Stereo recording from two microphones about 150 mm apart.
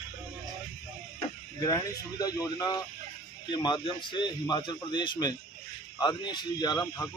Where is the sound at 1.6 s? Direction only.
25° left (ahead or behind).